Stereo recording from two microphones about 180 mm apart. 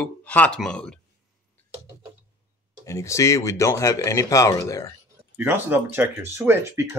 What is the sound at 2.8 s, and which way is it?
Speech, 15° left (ahead or behind).